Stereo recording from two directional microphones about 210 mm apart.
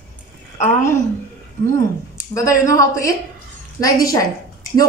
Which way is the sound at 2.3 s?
15° left (ahead or behind).